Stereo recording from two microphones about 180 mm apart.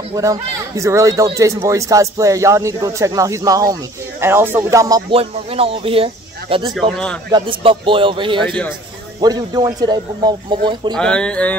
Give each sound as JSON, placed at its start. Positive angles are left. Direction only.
{"t": 0.1, "sound": "a man's voice", "side_deg": -20}
{"t": 5.1, "sound": "speech", "side_deg": -35}
{"t": 6.7, "sound": "speech", "side_deg": 0}
{"t": 7.3, "sound": "a man's voice", "side_deg": -30}
{"t": 8.5, "sound": "speech", "side_deg": 5}
{"t": 9.2, "sound": "a man's voice", "side_deg": -20}
{"t": 11.0, "sound": "speech", "side_deg": 5}